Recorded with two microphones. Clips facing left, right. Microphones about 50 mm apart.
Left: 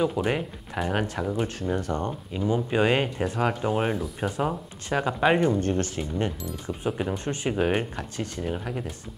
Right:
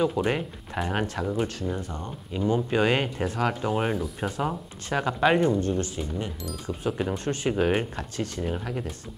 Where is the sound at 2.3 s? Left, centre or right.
Centre.